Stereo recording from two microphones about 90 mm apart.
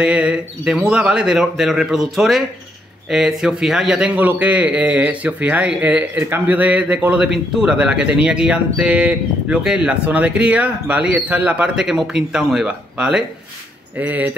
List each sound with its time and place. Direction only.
0.0 s a man's voice: 10° right (ahead or behind)
4.1 s a man's voice: 20° right (ahead or behind)